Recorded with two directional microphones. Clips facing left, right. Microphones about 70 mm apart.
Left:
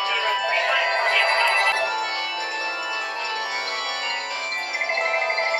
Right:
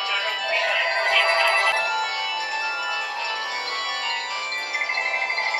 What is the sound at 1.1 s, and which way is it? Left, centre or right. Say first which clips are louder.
Music: right 3 dB; left.